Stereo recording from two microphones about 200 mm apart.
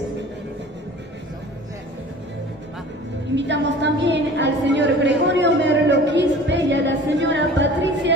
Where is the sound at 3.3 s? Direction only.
60° right (ahead or behind).